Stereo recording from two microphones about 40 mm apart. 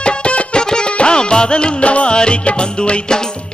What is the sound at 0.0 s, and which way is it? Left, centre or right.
Music, left.